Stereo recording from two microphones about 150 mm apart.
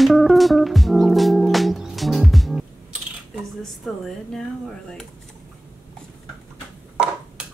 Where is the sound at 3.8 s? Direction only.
Centre (ahead or behind).